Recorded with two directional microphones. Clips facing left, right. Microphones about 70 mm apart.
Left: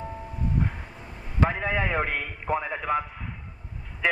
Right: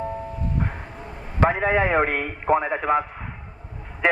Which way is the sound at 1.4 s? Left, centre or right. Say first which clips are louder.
Right 6 dB; right.